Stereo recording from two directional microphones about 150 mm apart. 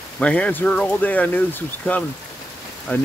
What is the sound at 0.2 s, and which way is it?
Speech, 10° left (ahead or behind).